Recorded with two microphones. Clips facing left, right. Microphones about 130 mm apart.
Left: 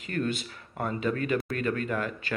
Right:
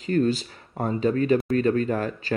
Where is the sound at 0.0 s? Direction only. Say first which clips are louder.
Right 8 dB; 35° right (ahead or behind).